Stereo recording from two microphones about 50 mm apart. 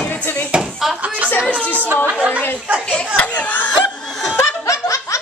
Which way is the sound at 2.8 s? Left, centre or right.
Left.